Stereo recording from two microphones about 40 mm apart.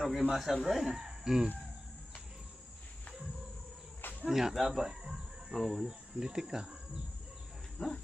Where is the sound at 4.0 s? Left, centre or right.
Left.